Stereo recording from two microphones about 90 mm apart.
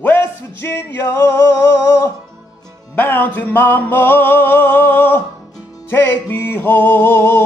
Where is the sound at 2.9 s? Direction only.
20° left (ahead or behind).